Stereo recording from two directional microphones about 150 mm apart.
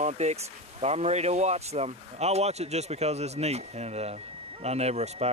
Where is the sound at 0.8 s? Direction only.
45° right (ahead or behind).